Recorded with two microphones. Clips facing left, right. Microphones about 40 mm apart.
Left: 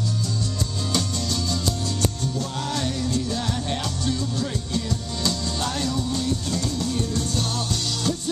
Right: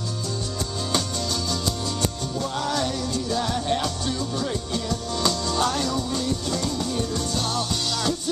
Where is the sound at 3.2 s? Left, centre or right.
Centre.